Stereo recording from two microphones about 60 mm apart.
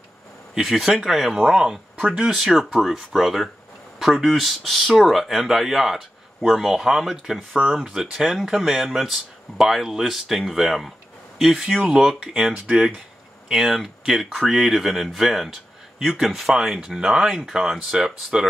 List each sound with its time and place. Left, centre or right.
0.6 s speech: centre
13.5 s speech: centre